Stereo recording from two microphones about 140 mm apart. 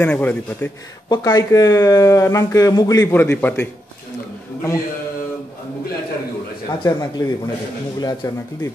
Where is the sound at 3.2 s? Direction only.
15° left (ahead or behind).